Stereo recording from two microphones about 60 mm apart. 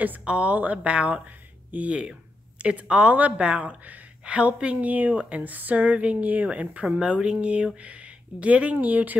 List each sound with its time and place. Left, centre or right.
0.2 s a woman's voice: centre